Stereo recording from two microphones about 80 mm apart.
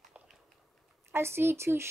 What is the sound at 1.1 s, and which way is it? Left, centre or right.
Speech, right.